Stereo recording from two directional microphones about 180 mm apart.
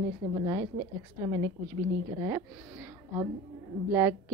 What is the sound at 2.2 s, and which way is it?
A woman's voice, 15° right (ahead or behind).